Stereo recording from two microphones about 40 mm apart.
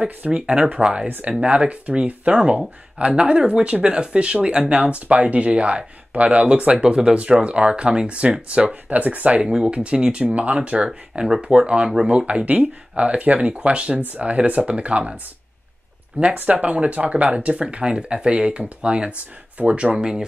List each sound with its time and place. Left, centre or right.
0.3 s speech: right
8.8 s speech: right
9.7 s speech: right
10.9 s speech: centre; by 15.1 s right
16.1 s speech: right